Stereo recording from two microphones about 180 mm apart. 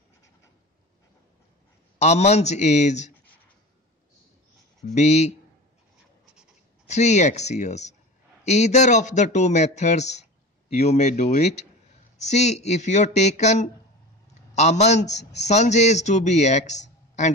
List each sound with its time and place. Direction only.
2.0 s a man's voice: 40° left (ahead or behind)
4.8 s a man's voice: 40° left (ahead or behind)
6.9 s a man's voice: 40° left (ahead or behind)